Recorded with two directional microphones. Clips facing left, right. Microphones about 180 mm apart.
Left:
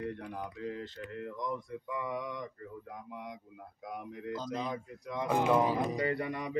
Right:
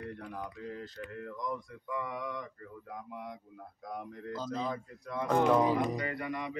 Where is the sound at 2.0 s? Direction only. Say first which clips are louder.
Left 1 dB; 20° left (ahead or behind).